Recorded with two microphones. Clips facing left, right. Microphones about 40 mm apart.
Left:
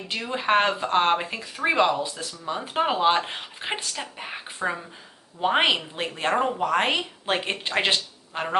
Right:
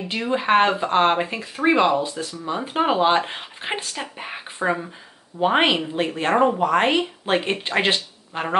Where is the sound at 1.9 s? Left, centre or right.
Right.